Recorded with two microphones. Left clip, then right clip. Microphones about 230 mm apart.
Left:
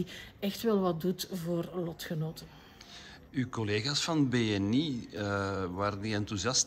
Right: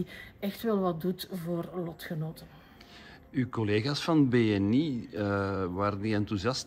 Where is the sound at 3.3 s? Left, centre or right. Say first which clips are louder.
Right 3 dB; centre.